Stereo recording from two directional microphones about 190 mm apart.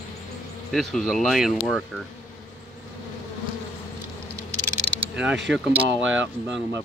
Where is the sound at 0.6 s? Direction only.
Centre (ahead or behind).